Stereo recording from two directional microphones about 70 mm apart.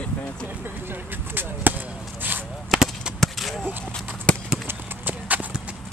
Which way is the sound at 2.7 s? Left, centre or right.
Centre.